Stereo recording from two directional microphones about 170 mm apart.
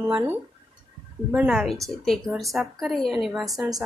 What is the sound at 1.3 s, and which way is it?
A woman's voice, 5° right (ahead or behind).